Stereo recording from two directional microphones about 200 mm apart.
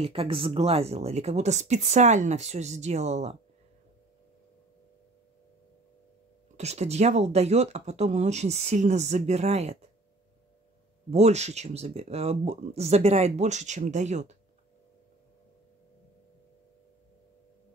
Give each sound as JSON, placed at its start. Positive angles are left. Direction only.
{"t": 0.0, "sound": "speech", "side_deg": -30}
{"t": 6.5, "sound": "speech", "side_deg": -35}
{"t": 11.1, "sound": "speech", "side_deg": -35}